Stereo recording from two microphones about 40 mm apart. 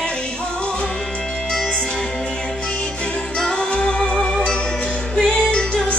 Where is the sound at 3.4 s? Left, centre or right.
Left.